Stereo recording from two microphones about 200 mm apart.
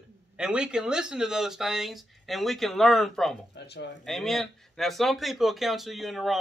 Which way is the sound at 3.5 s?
55° left (ahead or behind).